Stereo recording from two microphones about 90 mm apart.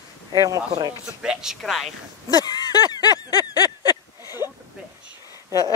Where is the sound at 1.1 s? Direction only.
5° right (ahead or behind).